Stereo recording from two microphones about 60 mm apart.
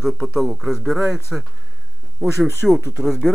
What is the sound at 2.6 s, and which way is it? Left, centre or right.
Speech, centre.